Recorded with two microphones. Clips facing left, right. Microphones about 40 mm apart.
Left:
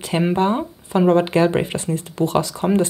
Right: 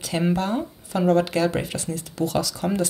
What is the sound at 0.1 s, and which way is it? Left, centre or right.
Speech, left.